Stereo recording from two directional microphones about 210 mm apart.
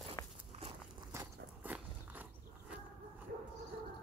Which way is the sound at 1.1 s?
10° right (ahead or behind).